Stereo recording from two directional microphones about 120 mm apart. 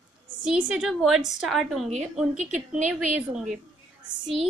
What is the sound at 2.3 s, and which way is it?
Speech, 90° right.